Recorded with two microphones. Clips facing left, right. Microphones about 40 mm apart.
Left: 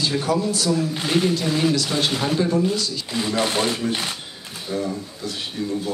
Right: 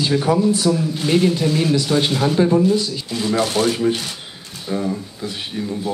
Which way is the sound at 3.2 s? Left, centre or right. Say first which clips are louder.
Right 4 dB; centre.